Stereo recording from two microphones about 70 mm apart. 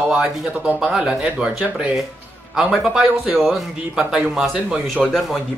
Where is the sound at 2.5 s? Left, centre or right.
Centre.